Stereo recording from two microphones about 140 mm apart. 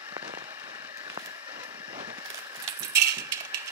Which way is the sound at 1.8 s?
30° right (ahead or behind).